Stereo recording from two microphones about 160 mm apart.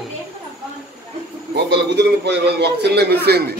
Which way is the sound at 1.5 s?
90° right.